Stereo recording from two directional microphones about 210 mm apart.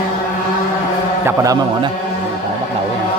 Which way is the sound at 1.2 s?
15° right (ahead or behind).